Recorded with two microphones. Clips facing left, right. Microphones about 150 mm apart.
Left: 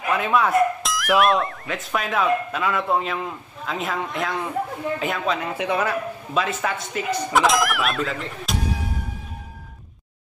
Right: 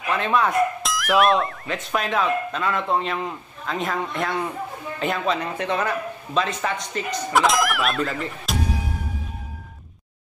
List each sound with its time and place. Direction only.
0.1 s speech: 5° left (ahead or behind)